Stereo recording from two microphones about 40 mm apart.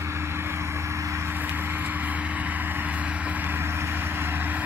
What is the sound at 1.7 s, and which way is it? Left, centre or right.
Vehicle, right.